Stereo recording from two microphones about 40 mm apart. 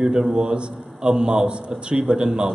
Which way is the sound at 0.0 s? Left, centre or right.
Centre.